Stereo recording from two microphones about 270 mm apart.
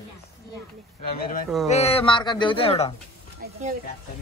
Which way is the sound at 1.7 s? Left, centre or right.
Left.